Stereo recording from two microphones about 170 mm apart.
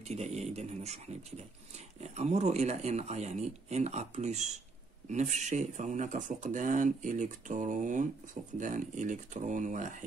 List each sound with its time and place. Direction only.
0.1 s speech: 40° right (ahead or behind)